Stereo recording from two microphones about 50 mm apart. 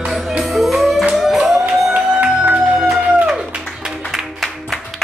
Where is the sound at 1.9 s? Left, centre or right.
Right.